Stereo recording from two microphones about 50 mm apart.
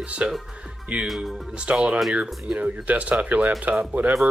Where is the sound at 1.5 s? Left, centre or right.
Centre.